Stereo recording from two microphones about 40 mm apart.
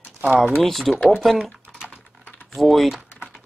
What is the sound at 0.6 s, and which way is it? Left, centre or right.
Speech, centre.